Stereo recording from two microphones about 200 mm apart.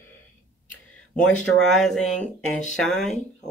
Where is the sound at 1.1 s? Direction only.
Centre (ahead or behind).